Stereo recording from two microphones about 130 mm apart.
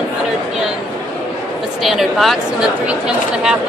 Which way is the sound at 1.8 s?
Centre (ahead or behind).